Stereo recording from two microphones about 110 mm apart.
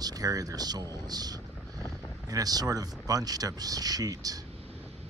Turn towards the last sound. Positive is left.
turn(degrees=-35)  # may be behind; listen again after turning